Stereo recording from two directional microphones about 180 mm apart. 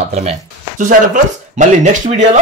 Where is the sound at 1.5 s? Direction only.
45° right (ahead or behind).